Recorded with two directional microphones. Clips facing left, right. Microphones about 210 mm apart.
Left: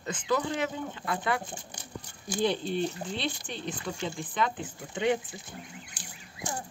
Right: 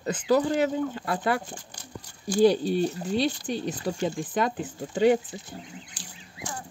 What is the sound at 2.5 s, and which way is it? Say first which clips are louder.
Speech: right 4 dB; 40° right (ahead or behind).